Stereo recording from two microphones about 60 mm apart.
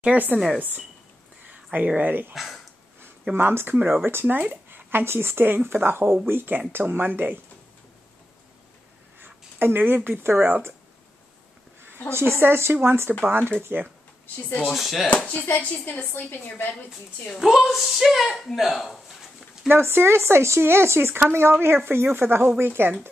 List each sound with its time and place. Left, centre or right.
0.0 s speech: right
2.3 s speech: centre
3.3 s speech: right
3.7 s speech: right
4.0 s speech: right
4.4 s speech: right
9.2 s speech: right
12.1 s speech: right
14.2 s speech: left
14.7 s speech: centre
15.0 s a woman's voice: left
17.3 s speech: centre
19.7 s speech: right